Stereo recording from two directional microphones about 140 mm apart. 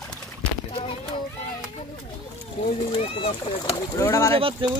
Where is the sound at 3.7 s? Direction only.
20° left (ahead or behind).